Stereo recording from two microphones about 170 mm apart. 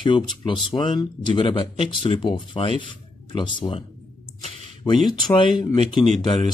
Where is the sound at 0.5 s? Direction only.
30° left (ahead or behind).